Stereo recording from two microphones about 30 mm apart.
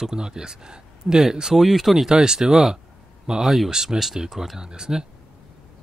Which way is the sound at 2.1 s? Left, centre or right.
Right.